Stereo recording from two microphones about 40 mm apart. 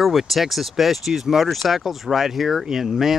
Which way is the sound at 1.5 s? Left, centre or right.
Centre.